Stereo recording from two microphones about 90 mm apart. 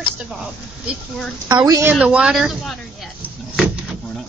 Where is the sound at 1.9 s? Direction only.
10° right (ahead or behind).